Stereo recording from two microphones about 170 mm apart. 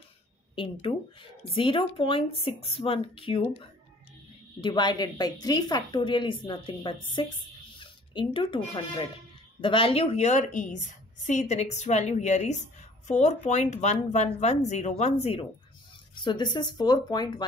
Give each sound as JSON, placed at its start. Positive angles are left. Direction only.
{"t": 0.9, "sound": "speech", "side_deg": 30}
{"t": 4.6, "sound": "a woman's voice", "side_deg": 25}
{"t": 16.2, "sound": "a woman's voice", "side_deg": 25}